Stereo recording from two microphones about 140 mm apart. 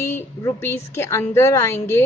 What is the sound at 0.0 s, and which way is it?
A woman's voice, 20° left (ahead or behind).